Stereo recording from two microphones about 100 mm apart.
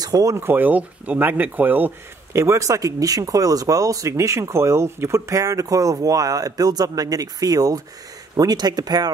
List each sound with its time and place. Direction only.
0.0 s speech: 35° right (ahead or behind); by 1.9 s 20° right (ahead or behind)
2.3 s speech: 30° right (ahead or behind)